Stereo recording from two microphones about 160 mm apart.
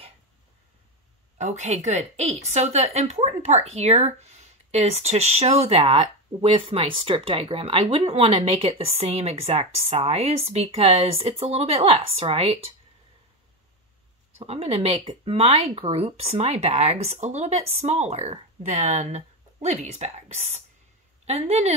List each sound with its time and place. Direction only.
1.4 s speech: 45° right (ahead or behind)
14.4 s speech: 40° right (ahead or behind)